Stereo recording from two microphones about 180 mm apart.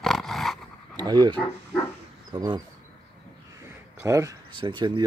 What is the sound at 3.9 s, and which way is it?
Speech, 15° right (ahead or behind).